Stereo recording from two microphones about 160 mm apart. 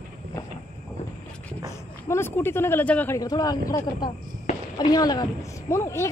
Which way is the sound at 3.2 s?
25° left (ahead or behind).